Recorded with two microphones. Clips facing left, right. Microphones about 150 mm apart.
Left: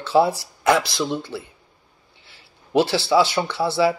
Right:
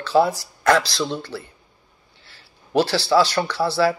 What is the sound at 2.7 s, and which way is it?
Speech, 20° left (ahead or behind).